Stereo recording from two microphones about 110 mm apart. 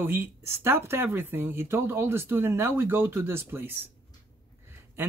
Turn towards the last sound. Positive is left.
turn(degrees=-20)  # may be behind; listen again after turning